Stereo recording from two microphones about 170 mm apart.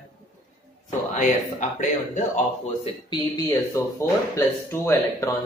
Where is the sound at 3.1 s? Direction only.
20° left (ahead or behind).